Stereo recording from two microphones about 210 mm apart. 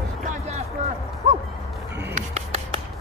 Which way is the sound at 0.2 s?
35° right (ahead or behind).